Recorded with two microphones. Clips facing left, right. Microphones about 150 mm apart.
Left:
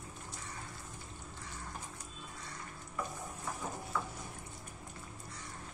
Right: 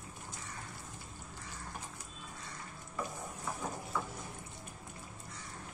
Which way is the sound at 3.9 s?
10° right (ahead or behind).